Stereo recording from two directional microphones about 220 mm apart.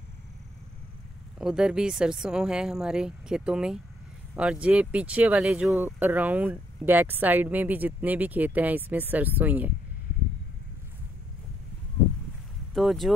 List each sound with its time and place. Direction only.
1.4 s speech: 5° right (ahead or behind)
12.7 s speech: centre (ahead or behind)